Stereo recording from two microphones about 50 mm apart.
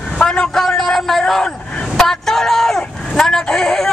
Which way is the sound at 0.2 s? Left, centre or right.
Centre.